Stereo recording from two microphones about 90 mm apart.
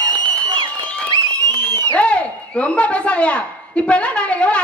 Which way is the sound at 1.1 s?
50° right (ahead or behind).